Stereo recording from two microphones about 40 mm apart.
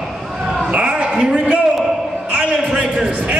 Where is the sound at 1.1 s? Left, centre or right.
Centre.